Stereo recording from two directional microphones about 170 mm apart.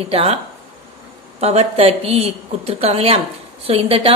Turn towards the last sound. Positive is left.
turn(degrees=-35)  # may be behind; listen again after turning